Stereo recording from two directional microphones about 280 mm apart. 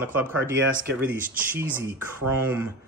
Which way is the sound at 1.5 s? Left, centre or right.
Centre.